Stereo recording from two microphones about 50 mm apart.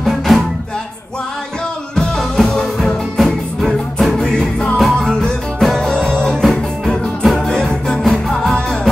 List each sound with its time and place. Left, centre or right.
0.0 s music: centre
2.0 s music: centre
4.3 s music: centre
5.9 s music: centre
7.3 s music: centre